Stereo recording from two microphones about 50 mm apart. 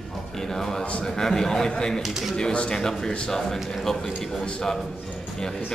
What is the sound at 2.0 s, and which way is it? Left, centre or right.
Speech, centre.